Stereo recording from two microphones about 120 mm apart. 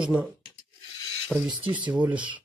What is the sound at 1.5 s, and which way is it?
Speech, 40° right (ahead or behind).